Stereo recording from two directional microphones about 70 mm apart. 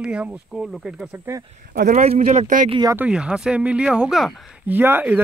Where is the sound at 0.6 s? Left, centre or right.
Centre.